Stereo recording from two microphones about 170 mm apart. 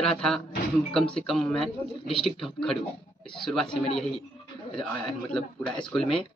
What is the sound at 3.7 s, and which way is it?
Speech, 30° left (ahead or behind).